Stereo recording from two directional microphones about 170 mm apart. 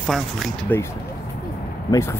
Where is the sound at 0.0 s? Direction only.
Centre (ahead or behind).